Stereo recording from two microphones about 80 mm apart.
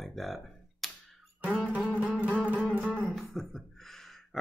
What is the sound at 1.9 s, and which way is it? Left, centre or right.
Music, centre.